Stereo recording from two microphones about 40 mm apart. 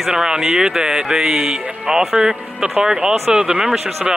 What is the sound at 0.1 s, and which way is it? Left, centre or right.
Speech, centre.